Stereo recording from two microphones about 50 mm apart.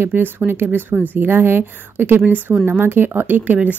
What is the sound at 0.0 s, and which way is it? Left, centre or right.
A woman's voice, right.